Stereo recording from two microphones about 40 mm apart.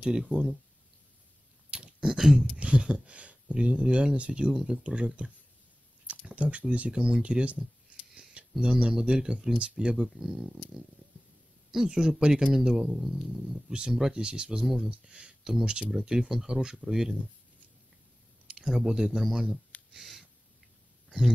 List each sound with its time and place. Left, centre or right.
0.0 s speech: centre
1.7 s a sound: right
2.0 s speech: centre
2.5 s speech: right
6.3 s speech: right
9.9 s speech: centre
11.7 s speech: centre
13.0 s speech: centre
14.2 s speech: right
14.6 s speech: centre
14.9 s speech: right
15.8 s speech: centre
18.5 s a sound: right
18.8 s speech: centre